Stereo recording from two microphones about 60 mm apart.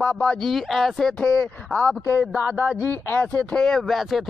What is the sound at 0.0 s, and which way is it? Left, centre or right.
Speech, left.